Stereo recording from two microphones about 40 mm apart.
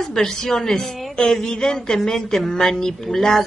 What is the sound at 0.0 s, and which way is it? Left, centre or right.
A woman's voice, centre.